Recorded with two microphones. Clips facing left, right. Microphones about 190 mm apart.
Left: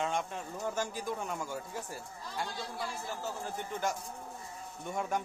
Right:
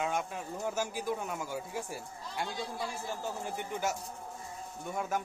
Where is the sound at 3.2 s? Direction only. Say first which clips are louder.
Right 1 dB; 15° right (ahead or behind).